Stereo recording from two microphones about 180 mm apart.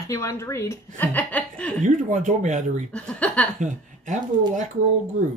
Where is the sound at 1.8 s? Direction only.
45° right (ahead or behind).